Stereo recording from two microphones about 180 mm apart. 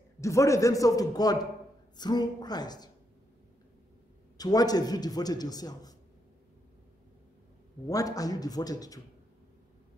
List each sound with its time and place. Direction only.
0.2 s a man's voice: 15° left (ahead or behind)
4.4 s a man's voice: 20° left (ahead or behind)
7.9 s a man's voice: 20° left (ahead or behind)